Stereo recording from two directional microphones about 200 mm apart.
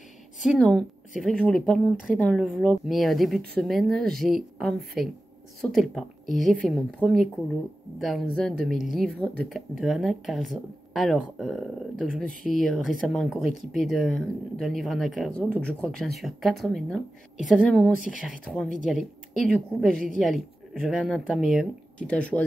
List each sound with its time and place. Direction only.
0.4 s speech: centre (ahead or behind)